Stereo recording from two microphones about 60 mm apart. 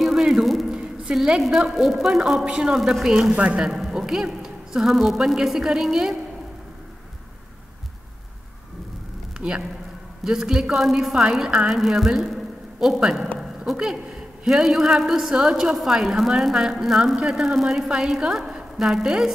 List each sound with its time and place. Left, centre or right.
0.0 s a sound: centre
1.7 s a man's voice: centre
9.4 s a man's voice: right
10.2 s a man's voice: centre
11.8 s a man's voice: centre